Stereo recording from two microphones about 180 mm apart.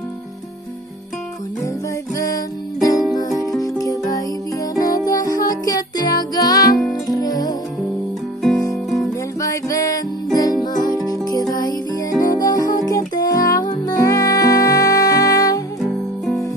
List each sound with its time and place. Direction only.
2.1 s music: 20° left (ahead or behind)
9.4 s music: 15° left (ahead or behind)
15.8 s music: centre (ahead or behind)